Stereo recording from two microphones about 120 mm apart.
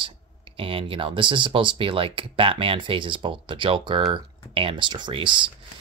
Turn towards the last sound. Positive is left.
turn(degrees=-45)  # may be behind; listen again after turning